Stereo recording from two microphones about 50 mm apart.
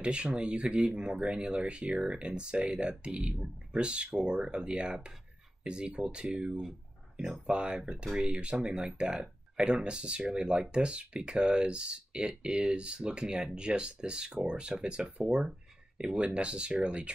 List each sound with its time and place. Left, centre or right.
0.0 s speech: right